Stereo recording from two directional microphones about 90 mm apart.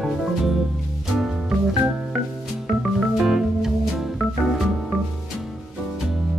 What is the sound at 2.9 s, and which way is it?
Organ, centre (ahead or behind).